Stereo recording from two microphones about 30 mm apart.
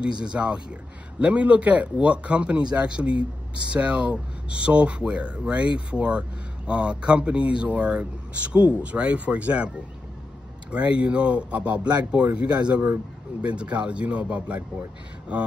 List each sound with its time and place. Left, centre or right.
0.0 s speech: right
1.2 s speech: right
10.7 s speech: right